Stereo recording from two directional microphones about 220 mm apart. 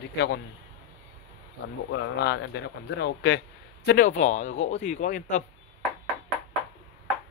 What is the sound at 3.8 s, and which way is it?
Speech, 40° left (ahead or behind).